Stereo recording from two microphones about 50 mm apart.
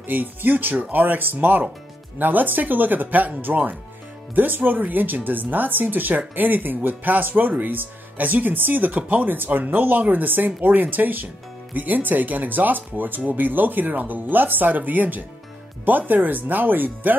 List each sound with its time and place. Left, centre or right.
0.0 s speech: right